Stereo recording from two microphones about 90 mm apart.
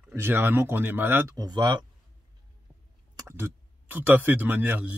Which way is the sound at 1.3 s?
45° right (ahead or behind).